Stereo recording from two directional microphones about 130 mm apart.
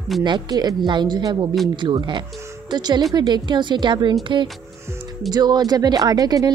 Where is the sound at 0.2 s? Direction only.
35° right (ahead or behind).